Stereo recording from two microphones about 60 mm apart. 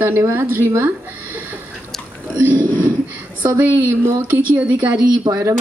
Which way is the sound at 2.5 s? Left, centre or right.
Right.